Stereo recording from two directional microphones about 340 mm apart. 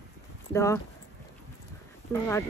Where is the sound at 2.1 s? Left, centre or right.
Centre.